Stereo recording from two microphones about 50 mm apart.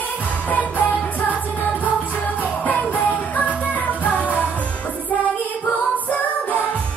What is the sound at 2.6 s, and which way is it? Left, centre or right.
Music, left.